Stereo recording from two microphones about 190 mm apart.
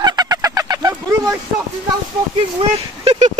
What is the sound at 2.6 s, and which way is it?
Speech, 35° right (ahead or behind).